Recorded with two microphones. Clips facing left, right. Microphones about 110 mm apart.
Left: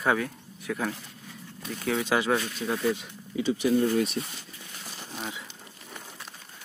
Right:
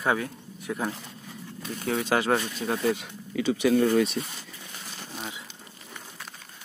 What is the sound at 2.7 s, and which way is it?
Speech, 60° right (ahead or behind).